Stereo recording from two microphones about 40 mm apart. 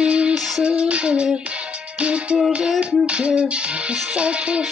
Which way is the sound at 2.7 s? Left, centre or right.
Right.